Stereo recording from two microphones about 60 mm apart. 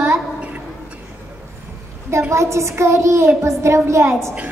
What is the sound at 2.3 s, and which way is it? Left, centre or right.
A woman's voice, right.